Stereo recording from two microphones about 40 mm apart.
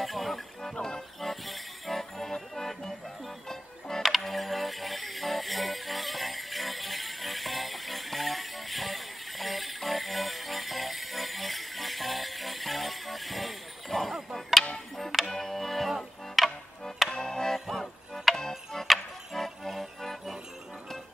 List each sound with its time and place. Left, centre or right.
0.0 s music: centre
0.7 s speech: centre
1.2 s music: centre
4.0 s music: centre
17.1 s music: centre
17.6 s music: centre